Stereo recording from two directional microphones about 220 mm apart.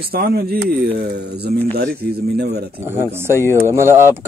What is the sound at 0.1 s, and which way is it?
Speech, 45° right (ahead or behind).